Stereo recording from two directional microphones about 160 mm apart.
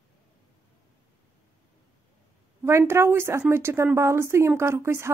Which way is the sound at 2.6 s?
15° right (ahead or behind).